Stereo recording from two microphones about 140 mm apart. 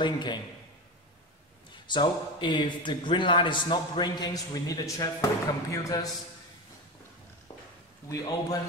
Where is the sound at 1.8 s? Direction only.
35° left (ahead or behind).